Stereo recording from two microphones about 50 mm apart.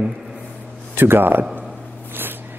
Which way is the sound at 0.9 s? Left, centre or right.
Right.